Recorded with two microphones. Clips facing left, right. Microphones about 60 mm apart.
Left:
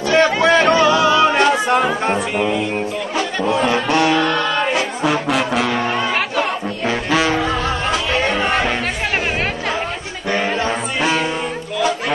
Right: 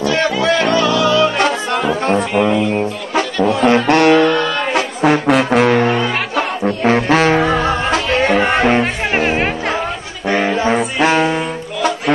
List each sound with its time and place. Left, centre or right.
0.1 s music: left
3.2 s music: right
8.2 s music: right
10.2 s chatter: right
11.0 s music: right